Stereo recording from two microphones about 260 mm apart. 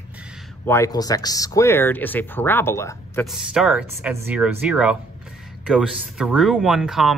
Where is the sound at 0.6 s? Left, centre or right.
Centre.